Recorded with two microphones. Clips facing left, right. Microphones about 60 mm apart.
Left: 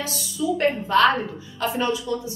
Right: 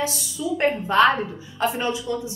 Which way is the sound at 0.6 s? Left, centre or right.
Centre.